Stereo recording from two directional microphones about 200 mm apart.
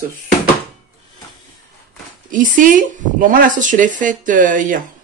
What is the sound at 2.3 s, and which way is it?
Speech, 40° right (ahead or behind).